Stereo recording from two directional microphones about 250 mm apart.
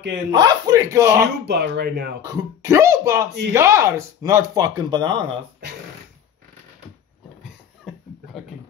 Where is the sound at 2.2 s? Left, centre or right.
Centre.